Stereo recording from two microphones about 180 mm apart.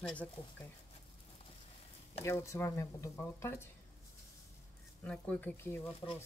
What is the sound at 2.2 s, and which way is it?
Speech, 15° left (ahead or behind).